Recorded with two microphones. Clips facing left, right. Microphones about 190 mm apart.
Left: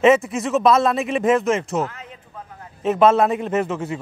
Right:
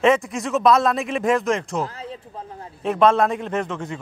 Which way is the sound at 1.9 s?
35° right (ahead or behind).